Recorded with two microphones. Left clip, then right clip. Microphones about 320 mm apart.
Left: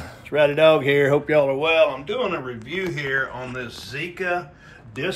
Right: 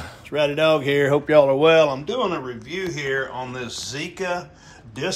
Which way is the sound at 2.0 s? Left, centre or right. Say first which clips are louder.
Right 1 dB; centre.